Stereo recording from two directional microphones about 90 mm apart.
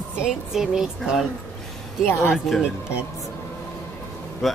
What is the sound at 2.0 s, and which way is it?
Speech, 25° left (ahead or behind).